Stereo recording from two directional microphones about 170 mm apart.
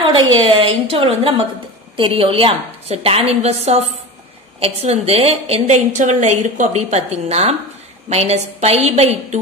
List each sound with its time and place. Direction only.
0.1 s a woman's voice: 30° right (ahead or behind)